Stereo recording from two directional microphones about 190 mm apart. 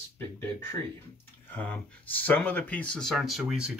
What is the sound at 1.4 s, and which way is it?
Speech, 10° left (ahead or behind).